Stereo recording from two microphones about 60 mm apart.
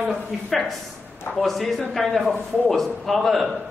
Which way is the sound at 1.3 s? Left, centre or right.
Centre.